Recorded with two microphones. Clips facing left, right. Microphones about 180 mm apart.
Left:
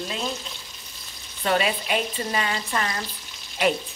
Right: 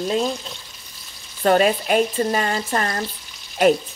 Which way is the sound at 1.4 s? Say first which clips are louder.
Right 7 dB; 45° right (ahead or behind).